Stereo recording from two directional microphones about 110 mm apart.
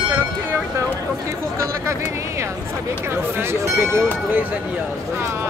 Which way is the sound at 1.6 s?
25° right (ahead or behind).